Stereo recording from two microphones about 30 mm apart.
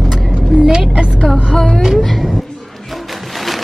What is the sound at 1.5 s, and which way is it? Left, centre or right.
Speech, centre.